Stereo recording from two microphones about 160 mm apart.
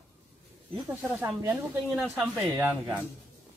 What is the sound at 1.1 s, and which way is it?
A man's voice, 15° right (ahead or behind).